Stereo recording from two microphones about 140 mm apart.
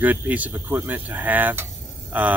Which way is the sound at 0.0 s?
10° right (ahead or behind).